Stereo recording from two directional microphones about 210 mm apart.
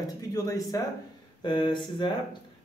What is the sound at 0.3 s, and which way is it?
Speech, 15° left (ahead or behind).